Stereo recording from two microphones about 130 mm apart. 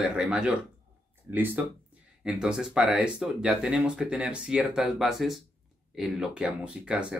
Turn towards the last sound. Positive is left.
turn(degrees=-10)  # may be behind; listen again after turning